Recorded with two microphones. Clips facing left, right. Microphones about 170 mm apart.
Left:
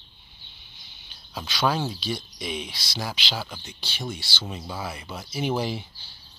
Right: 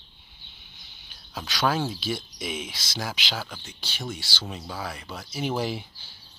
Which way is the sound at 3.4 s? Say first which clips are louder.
Left 1 dB; 10° left (ahead or behind).